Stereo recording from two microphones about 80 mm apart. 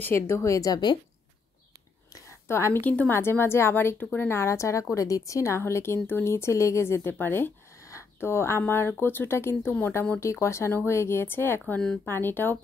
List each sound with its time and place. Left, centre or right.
0.1 s a woman's voice: left
2.1 s a sound: left
2.8 s a woman's voice: centre
10.2 s a woman's voice: left